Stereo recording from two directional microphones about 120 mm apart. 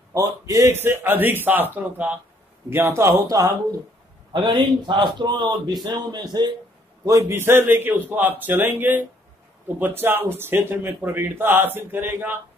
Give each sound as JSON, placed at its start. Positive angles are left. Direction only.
{"t": 0.1, "sound": "speech", "side_deg": -30}
{"t": 4.3, "sound": "a man's voice", "side_deg": -40}
{"t": 7.1, "sound": "speech", "side_deg": -25}